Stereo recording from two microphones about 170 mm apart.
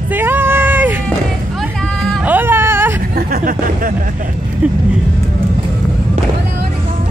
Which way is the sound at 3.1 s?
60° right (ahead or behind).